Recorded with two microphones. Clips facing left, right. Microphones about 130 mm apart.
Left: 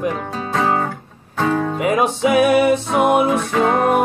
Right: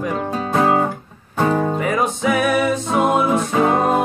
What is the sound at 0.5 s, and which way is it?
Music, 10° right (ahead or behind).